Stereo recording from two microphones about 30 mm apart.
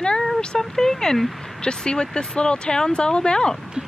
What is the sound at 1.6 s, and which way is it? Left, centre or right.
Speech, left.